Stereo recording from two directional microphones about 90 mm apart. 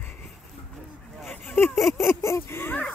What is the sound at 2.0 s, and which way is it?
Speech, 30° left (ahead or behind).